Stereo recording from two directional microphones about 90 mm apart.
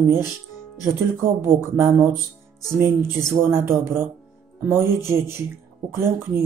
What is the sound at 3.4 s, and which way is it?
A woman's voice, 30° right (ahead or behind).